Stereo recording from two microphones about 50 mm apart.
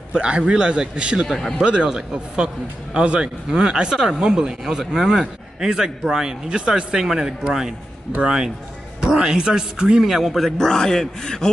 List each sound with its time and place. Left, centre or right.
0.1 s a man's voice: centre
1.2 s speech: centre
1.6 s a man's voice: centre
9.0 s a man's voice: centre